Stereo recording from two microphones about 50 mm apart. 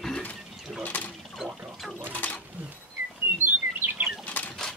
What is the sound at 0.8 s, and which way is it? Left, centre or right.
Mechanisms, left.